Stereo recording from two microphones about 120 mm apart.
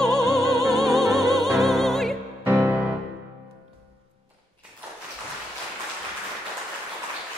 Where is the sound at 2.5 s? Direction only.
25° right (ahead or behind).